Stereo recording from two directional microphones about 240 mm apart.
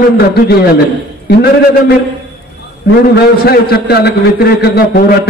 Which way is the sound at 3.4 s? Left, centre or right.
Left.